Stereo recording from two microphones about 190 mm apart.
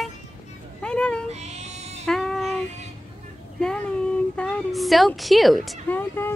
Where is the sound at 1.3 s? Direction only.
35° right (ahead or behind).